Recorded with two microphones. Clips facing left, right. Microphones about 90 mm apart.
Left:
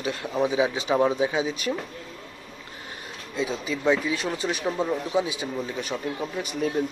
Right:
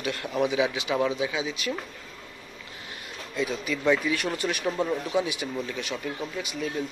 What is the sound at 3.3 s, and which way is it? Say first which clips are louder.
Speech: left 1 dB; 25° left (ahead or behind).